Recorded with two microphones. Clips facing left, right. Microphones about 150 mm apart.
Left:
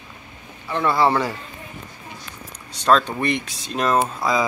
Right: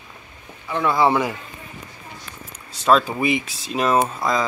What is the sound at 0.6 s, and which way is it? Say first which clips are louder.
Speech: even; 5° right (ahead or behind).